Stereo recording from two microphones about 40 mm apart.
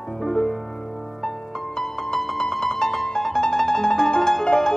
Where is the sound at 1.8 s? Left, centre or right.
Centre.